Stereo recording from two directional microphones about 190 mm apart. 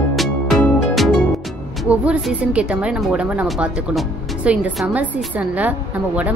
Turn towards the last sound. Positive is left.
turn(degrees=-10)  # may be behind; listen again after turning